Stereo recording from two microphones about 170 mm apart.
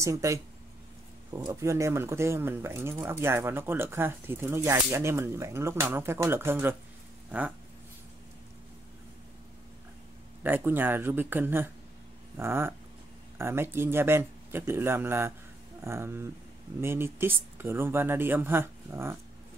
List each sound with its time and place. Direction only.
0.0 s speech: 20° right (ahead or behind)
1.4 s speech: 20° right (ahead or behind)
7.2 s a sound: 10° right (ahead or behind)
10.4 s speech: 10° right (ahead or behind)